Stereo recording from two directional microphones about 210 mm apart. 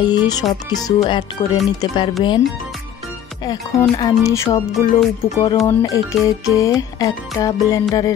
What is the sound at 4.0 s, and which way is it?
Speech, 15° left (ahead or behind).